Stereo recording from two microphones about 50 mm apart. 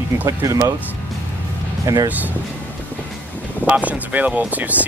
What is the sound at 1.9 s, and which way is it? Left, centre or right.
Speech, right.